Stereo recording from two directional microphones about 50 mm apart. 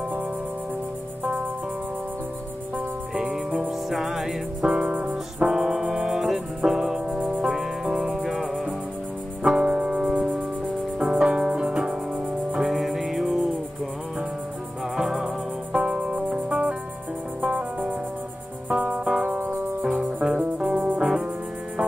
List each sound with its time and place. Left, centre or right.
3.2 s music: right
3.9 s music: centre
4.6 s music: right
5.4 s music: centre
7.2 s music: right
7.4 s music: centre
9.4 s music: centre
12.6 s music: centre
15.0 s music: centre
20.7 s music: right